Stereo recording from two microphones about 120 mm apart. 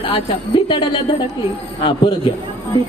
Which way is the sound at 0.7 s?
40° left (ahead or behind).